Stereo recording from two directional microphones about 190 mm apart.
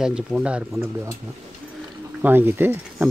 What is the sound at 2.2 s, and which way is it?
Speech, 10° right (ahead or behind).